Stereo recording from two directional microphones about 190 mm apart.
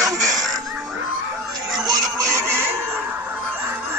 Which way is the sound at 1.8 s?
15° right (ahead or behind).